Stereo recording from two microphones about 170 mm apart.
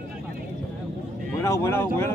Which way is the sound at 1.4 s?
15° left (ahead or behind).